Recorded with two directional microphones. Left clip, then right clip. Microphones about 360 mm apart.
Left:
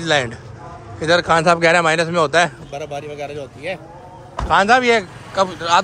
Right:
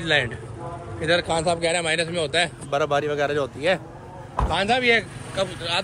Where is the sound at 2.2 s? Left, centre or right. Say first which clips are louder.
Left 7 dB; left.